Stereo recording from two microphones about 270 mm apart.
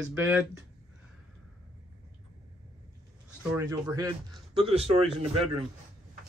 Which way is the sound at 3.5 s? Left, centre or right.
Centre.